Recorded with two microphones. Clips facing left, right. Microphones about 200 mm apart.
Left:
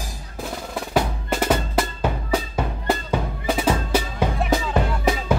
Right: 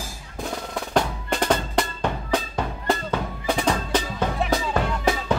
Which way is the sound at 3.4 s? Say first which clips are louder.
Left 1 dB; 5° left (ahead or behind).